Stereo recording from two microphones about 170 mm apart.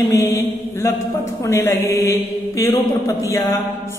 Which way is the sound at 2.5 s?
20° left (ahead or behind).